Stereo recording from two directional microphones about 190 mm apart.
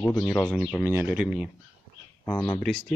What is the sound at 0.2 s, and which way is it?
Speech, 10° left (ahead or behind).